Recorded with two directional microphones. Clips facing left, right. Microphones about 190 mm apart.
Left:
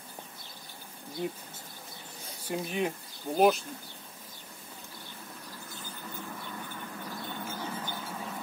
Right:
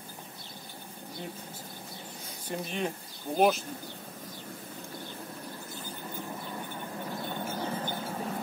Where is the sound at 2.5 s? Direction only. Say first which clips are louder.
Left 2 dB; 5° left (ahead or behind).